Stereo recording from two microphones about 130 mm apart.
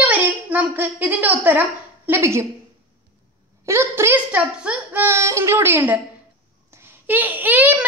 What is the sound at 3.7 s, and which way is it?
Speech, 20° right (ahead or behind).